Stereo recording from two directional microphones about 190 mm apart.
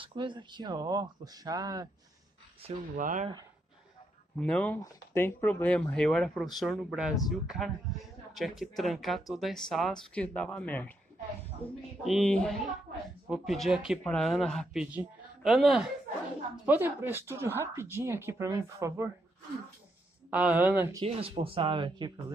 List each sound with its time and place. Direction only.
0.0 s speech: 25° right (ahead or behind)
3.0 s speech: 45° right (ahead or behind)
4.4 s speech: 5° left (ahead or behind)
12.0 s speech: centre (ahead or behind); by 19.0 s 15° right (ahead or behind)
20.2 s speech: 5° right (ahead or behind)
21.0 s speech: 30° right (ahead or behind)